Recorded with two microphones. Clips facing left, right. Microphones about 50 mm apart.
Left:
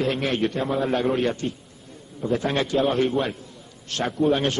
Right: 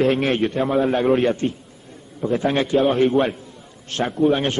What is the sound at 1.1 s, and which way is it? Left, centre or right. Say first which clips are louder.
A man's voice: right 5 dB; right.